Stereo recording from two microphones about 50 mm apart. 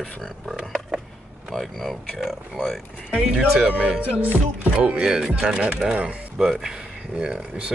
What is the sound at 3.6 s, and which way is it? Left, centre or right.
Speech, right.